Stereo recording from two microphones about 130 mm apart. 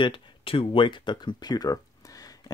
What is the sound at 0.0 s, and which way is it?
Speech, 45° left (ahead or behind).